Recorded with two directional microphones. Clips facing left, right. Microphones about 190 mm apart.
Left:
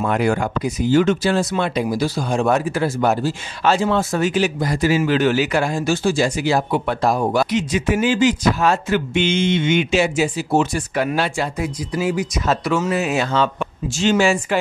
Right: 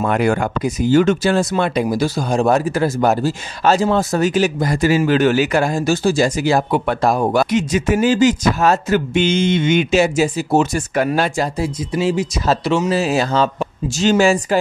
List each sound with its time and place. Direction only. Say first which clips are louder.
0.0 s speech: right 2 dB; 60° right (ahead or behind); by 14.6 s 40° right (ahead or behind)